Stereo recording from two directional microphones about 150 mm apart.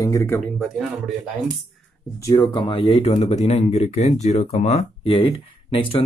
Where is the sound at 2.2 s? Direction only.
20° left (ahead or behind).